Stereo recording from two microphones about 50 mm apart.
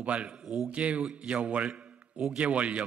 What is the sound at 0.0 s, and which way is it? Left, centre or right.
A man's voice, right.